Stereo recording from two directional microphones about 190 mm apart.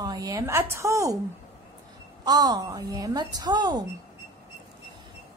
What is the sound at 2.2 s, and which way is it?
A woman's voice, 20° right (ahead or behind).